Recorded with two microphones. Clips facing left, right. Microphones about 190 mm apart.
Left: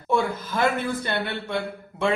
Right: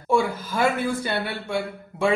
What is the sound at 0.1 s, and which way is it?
A man's voice, 5° right (ahead or behind).